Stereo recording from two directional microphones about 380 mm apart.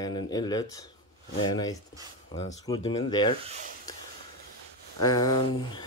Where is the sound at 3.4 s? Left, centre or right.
Centre.